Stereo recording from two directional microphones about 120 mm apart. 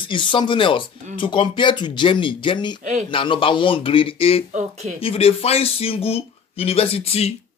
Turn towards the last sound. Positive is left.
turn(degrees=55)  # may be behind; listen again after turning